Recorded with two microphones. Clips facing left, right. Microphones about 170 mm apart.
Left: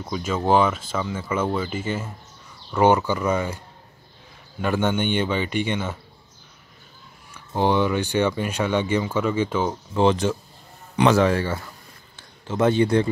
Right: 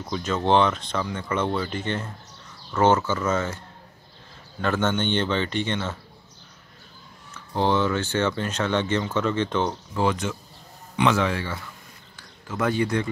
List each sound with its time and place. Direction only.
0.0 s speech: 5° left (ahead or behind)
7.2 s speech: 15° left (ahead or behind)
9.9 s a man's voice: 30° left (ahead or behind)
12.2 s a man's voice: 25° left (ahead or behind)